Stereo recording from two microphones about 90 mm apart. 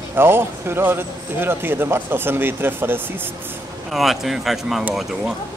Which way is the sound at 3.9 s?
Centre (ahead or behind).